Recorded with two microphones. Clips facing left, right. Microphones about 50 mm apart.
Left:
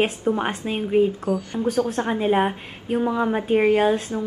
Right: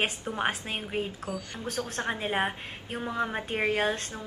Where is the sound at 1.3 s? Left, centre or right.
Centre.